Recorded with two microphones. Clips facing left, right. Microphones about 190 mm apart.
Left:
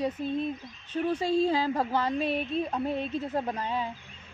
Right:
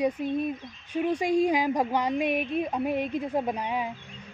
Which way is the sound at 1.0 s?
15° right (ahead or behind).